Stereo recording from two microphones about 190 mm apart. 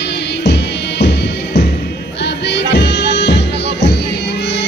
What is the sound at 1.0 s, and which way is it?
Music, 65° left (ahead or behind).